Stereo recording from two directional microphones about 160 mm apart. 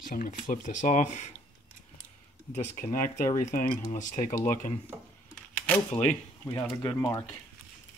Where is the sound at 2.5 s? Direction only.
60° left (ahead or behind).